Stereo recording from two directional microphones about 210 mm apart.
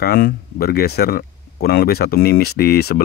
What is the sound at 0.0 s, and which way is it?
Speech, 45° left (ahead or behind).